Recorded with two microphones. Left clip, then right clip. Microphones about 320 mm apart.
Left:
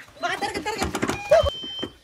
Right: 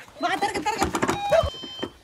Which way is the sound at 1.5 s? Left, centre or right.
Centre.